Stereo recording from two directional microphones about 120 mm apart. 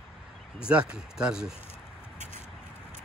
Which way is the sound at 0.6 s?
10° right (ahead or behind).